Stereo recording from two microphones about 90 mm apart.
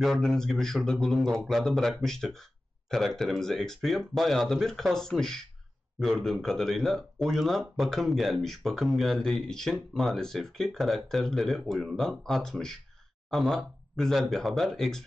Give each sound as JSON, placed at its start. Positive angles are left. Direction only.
{"t": 0.0, "sound": "speech", "side_deg": 5}